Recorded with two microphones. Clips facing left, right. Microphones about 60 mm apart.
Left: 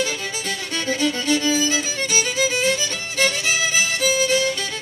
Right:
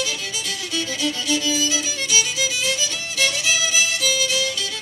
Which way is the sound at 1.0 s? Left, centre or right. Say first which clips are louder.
Left 3 dB; left.